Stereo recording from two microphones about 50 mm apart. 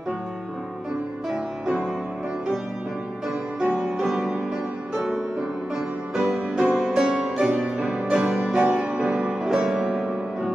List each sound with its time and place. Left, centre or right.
1.3 s music: centre
3.6 s music: centre
7.8 s music: right